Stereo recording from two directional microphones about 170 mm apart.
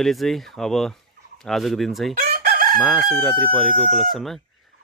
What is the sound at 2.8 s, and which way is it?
Speech, centre (ahead or behind).